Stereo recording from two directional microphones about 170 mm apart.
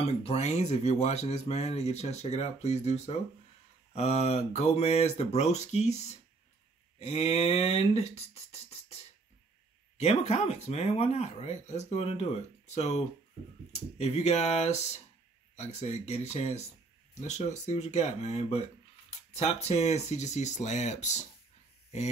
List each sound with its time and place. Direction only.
0.0 s speech: 35° left (ahead or behind)
7.0 s speech: 40° left (ahead or behind)
9.9 s speech: 40° left (ahead or behind)